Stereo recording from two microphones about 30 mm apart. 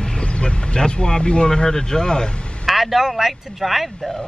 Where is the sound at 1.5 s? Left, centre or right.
Left.